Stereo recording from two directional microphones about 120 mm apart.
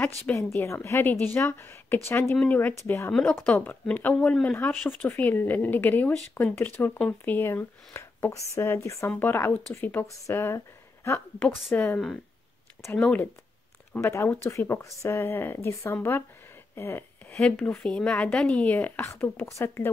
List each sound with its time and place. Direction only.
0.0 s speech: 20° left (ahead or behind); by 3.3 s 5° left (ahead or behind)
3.4 s speech: 15° left (ahead or behind)
4.5 s speech: 15° left (ahead or behind)
16.7 s a sound: 20° left (ahead or behind)
17.4 s speech: 10° left (ahead or behind)